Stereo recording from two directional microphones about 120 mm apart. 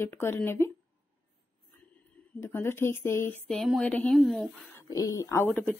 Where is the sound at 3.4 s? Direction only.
Centre (ahead or behind).